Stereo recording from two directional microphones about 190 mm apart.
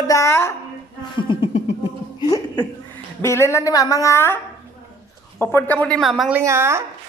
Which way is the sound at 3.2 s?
15° left (ahead or behind).